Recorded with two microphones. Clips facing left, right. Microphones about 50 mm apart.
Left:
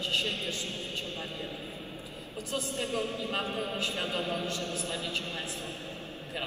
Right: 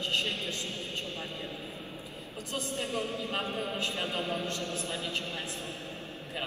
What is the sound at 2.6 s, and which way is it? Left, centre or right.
A woman's voice, left.